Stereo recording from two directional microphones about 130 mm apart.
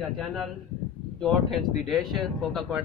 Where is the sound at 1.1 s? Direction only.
Centre (ahead or behind).